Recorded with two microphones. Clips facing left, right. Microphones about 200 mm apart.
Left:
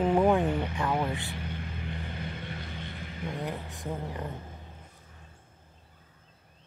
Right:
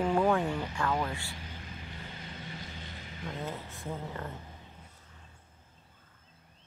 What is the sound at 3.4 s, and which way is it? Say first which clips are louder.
Speech: left 3 dB; 15° left (ahead or behind).